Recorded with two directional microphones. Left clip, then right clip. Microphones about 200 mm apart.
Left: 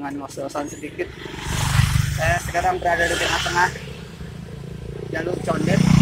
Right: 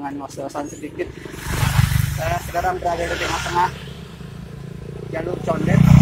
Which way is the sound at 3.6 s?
10° right (ahead or behind).